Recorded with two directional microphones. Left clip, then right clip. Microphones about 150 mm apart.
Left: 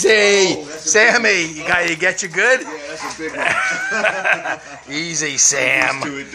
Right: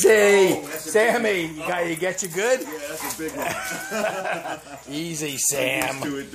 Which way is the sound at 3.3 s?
Centre (ahead or behind).